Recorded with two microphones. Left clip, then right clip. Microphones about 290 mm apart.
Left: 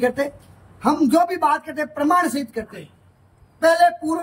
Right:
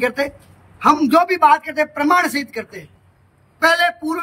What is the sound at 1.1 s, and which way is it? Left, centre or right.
A man's voice, centre.